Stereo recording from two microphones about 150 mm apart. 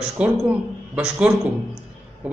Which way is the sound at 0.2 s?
10° right (ahead or behind).